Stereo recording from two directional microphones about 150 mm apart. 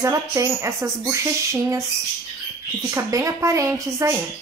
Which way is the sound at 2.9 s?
20° right (ahead or behind).